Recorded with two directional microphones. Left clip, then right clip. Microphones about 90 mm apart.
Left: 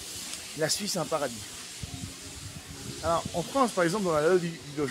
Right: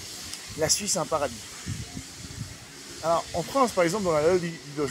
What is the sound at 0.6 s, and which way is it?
Speech, 10° left (ahead or behind).